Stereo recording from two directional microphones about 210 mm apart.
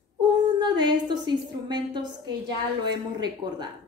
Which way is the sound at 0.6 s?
20° right (ahead or behind).